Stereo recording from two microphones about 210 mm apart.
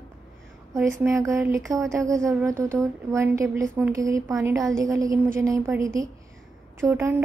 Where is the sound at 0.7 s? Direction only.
15° right (ahead or behind).